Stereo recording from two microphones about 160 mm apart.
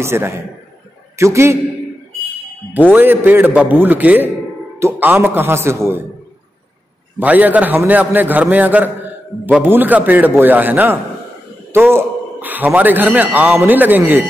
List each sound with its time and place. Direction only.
0.0 s a man's voice: 15° right (ahead or behind)
2.9 s a man's voice: 10° right (ahead or behind)
7.2 s a man's voice: 10° right (ahead or behind)